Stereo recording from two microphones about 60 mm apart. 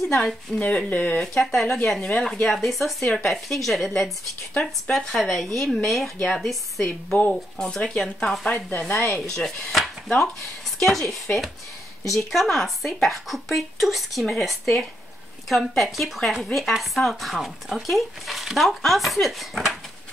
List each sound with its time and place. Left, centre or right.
0.0 s speech: centre
0.6 s speech: left
1.2 s speech: centre
2.4 s speech: centre
4.9 s speech: centre
8.5 s speech: centre
9.1 s speech: centre